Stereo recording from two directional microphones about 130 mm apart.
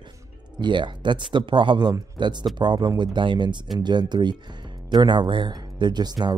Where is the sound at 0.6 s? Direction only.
35° right (ahead or behind).